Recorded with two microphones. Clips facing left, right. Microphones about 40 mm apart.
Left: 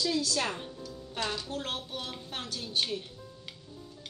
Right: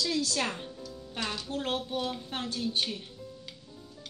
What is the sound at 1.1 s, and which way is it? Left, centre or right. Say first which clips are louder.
Speech: even; centre.